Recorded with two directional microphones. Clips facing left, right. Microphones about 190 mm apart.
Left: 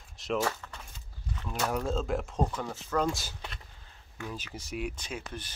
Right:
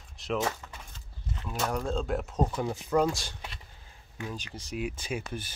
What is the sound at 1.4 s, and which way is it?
Speech, 5° right (ahead or behind).